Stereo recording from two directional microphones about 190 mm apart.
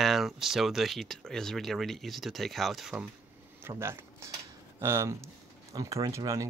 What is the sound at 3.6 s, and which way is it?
Speech, 15° right (ahead or behind).